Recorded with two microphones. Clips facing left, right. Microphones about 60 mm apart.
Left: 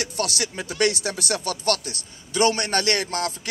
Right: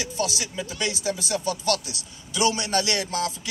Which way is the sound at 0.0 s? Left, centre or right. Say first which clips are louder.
Left 1 dB; left.